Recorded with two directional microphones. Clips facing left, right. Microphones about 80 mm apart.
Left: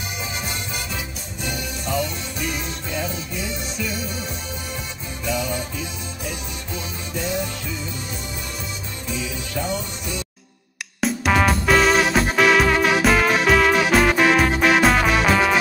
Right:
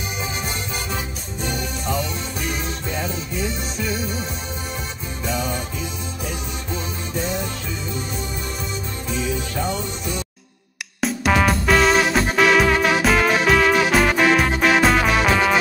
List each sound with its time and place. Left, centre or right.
5.2 s music: right
11.0 s music: centre